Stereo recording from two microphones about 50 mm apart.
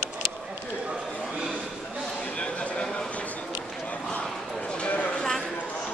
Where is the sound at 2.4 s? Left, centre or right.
Centre.